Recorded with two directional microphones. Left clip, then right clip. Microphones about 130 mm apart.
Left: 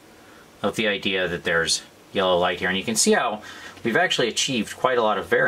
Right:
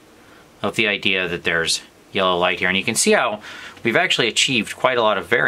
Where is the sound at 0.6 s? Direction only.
35° right (ahead or behind).